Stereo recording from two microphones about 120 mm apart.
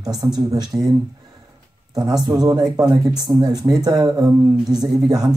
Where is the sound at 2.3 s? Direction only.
35° right (ahead or behind).